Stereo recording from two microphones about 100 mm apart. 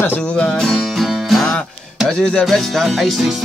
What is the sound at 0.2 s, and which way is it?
Music, 10° left (ahead or behind).